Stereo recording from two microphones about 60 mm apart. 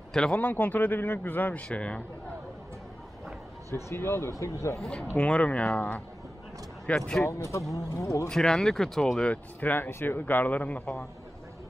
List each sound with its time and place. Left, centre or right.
0.1 s speech: centre
0.4 s speech: left
1.7 s speech: centre
3.7 s speech: left
4.7 s speech: centre; by 6.0 s left
7.0 s speech: centre
7.2 s speech: left
8.3 s speech: centre
9.2 s speech: left